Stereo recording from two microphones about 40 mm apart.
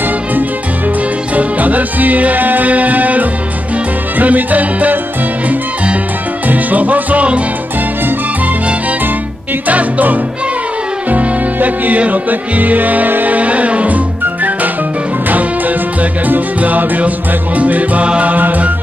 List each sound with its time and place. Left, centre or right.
0.0 s music: right
6.4 s music: right
9.7 s music: right